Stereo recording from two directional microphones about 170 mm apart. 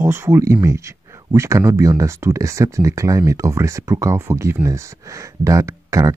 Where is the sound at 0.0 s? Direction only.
15° right (ahead or behind).